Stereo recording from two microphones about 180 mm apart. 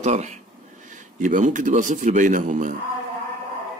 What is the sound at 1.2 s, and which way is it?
Speech, 45° right (ahead or behind).